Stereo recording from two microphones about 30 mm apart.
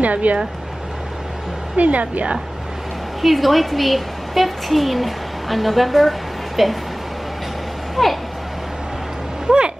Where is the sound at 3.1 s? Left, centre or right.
Centre.